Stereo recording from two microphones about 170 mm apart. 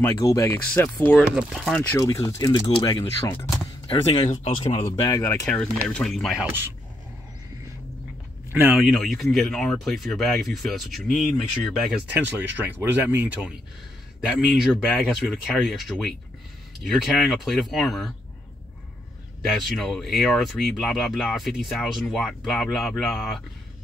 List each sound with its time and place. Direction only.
0.0 s speech: 15° left (ahead or behind); by 1.9 s centre (ahead or behind)
2.0 s speech: 15° left (ahead or behind)
3.3 s speech: 15° left (ahead or behind)
3.8 s speech: 30° left (ahead or behind)
5.2 s speech: 15° left (ahead or behind)
6.4 s speech: 10° right (ahead or behind)
8.5 s speech: 10° right (ahead or behind)
8.7 s speech: centre (ahead or behind)
14.2 s speech: centre (ahead or behind)
19.5 s speech: centre (ahead or behind)